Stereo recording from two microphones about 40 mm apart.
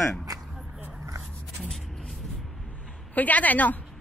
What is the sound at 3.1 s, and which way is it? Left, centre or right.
Speech, left.